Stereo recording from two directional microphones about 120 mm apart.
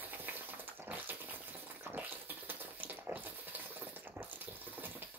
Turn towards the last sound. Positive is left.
turn(degrees=-15)  # may be behind; listen again after turning